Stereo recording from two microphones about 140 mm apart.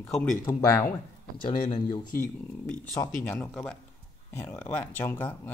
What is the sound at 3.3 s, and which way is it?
Speech, 10° left (ahead or behind).